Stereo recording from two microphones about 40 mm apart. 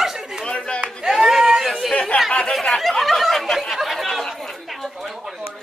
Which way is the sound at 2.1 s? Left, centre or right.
Left.